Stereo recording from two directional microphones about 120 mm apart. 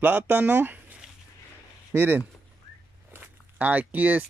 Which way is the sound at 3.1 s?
15° right (ahead or behind).